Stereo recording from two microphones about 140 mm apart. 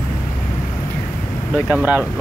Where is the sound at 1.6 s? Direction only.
10° right (ahead or behind).